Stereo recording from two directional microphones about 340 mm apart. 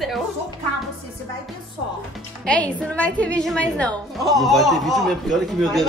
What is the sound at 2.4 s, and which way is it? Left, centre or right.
A woman's voice, centre.